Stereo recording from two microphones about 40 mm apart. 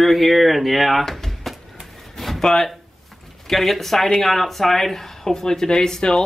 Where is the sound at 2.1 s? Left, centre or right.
Centre.